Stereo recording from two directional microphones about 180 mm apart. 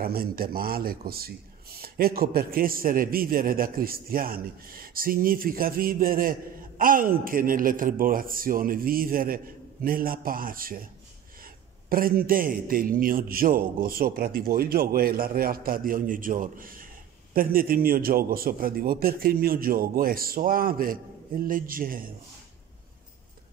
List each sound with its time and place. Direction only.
0.0 s a man's voice: 55° right (ahead or behind)